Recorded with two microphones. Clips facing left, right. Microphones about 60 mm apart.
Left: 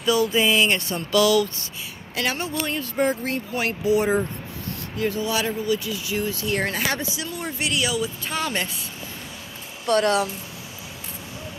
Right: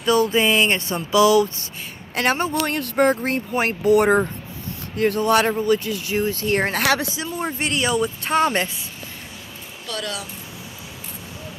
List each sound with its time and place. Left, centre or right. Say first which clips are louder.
0.0 s speech: right 2 dB; right
2.1 s speech: right 6 dB; right
2.6 s speech: right 3 dB; right
3.3 s speech: right 4 dB; right
3.8 s speech: right 5 dB; right
4.9 s speech: right 7 dB; right
6.8 s speech: right 6 dB; right
7.2 s speech: right 4 dB; right
9.8 s speech: left 10 dB; left